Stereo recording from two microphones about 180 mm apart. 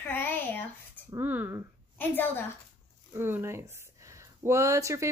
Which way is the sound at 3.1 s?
10° right (ahead or behind).